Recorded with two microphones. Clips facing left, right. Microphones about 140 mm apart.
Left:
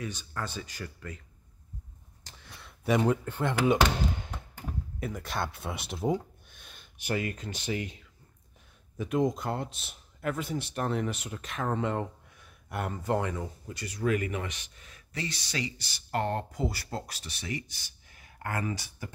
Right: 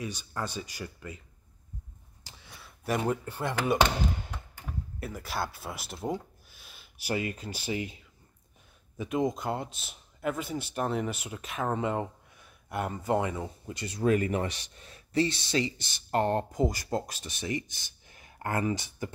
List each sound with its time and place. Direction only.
0.0 s speech: 15° right (ahead or behind)
2.2 s speech: 5° right (ahead or behind)
5.0 s speech: 5° right (ahead or behind)
8.9 s speech: 5° right (ahead or behind)
13.4 s speech: 25° right (ahead or behind)